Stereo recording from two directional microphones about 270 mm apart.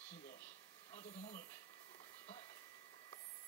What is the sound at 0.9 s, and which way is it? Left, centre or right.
Speech, left.